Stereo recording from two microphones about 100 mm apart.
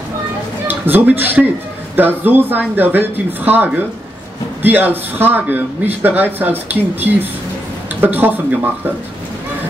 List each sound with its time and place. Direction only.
0.7 s a man's voice: 20° right (ahead or behind)